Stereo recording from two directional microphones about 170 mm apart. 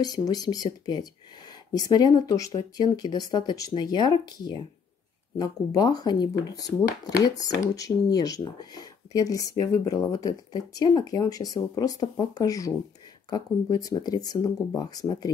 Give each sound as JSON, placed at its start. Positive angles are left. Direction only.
{"t": 0.0, "sound": "speech", "side_deg": 20}